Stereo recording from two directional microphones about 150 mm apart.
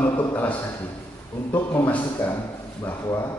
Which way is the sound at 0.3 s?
15° left (ahead or behind).